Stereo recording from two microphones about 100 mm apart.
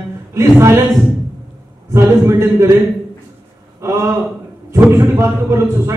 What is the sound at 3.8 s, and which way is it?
A man's voice, 30° right (ahead or behind).